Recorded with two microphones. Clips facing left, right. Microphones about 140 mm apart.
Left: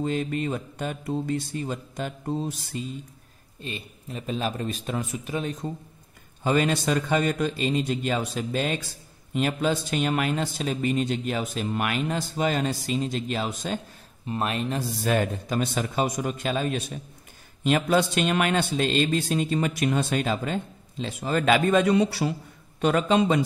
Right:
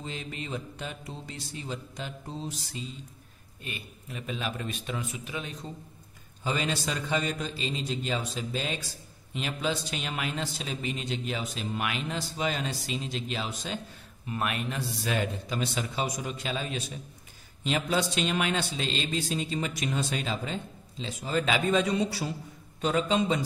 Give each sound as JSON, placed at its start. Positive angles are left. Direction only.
{"t": 0.0, "sound": "speech", "side_deg": 50}
{"t": 3.6, "sound": "a man's voice", "side_deg": 30}
{"t": 14.2, "sound": "a man's voice", "side_deg": 30}
{"t": 14.8, "sound": "a man's voice", "side_deg": 45}